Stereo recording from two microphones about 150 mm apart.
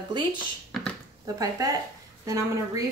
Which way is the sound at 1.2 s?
25° right (ahead or behind).